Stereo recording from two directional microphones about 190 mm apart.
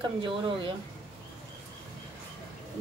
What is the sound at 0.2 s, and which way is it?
Speech, 25° right (ahead or behind).